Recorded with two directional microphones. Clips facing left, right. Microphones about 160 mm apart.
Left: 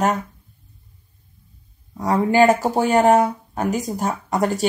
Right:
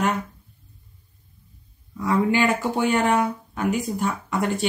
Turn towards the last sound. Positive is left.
turn(degrees=40)  # may be behind; listen again after turning